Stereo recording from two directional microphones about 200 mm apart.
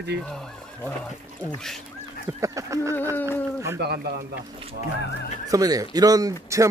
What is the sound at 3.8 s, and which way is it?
Speech, 55° right (ahead or behind).